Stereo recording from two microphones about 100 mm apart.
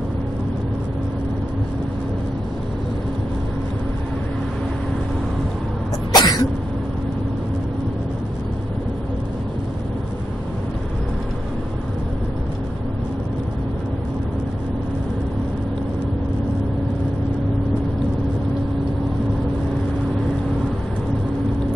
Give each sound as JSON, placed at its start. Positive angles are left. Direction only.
{"t": 6.1, "sound": "cough", "side_deg": 45}